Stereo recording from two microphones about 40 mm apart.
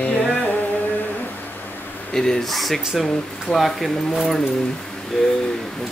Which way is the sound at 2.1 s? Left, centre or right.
Centre.